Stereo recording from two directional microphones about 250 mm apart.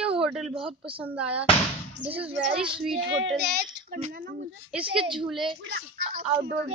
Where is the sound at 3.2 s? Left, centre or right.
Right.